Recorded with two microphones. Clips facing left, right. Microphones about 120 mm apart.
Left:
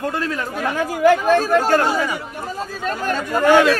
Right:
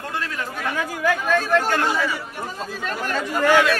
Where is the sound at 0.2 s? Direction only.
35° left (ahead or behind).